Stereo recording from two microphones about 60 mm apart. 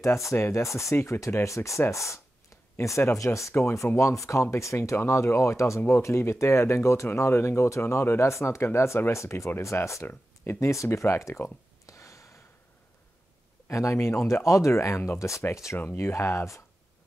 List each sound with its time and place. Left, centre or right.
0.0 s speech: left
3.3 s speech: left
5.8 s speech: left
6.0 s speech: left
10.0 s speech: left
11.8 s gasp: left
13.7 s speech: left